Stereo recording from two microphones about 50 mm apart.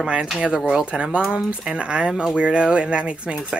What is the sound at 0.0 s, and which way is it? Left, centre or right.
Speech, centre.